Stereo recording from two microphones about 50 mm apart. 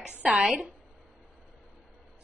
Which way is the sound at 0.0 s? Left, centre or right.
Right.